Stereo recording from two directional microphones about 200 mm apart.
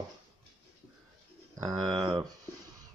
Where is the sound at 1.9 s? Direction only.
25° right (ahead or behind).